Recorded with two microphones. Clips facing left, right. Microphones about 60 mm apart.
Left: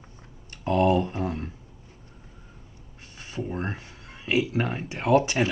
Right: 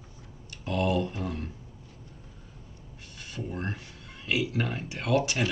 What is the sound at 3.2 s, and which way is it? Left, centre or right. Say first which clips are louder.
Speech: left 4 dB; left.